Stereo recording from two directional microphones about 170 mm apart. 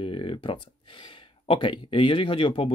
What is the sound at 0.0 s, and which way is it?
Speech, 30° left (ahead or behind).